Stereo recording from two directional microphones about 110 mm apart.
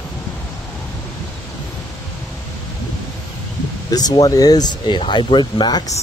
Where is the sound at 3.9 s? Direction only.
35° left (ahead or behind).